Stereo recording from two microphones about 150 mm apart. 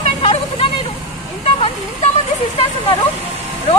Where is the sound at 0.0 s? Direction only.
35° left (ahead or behind).